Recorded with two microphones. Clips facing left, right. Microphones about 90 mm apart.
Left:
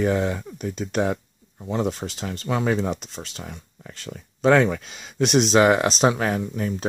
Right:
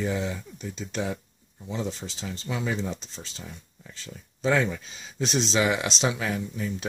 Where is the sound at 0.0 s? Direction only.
55° left (ahead or behind).